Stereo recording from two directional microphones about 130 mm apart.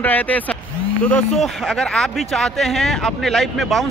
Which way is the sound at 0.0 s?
15° left (ahead or behind).